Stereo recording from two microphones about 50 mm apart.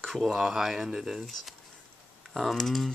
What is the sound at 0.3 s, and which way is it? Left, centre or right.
Speech, centre.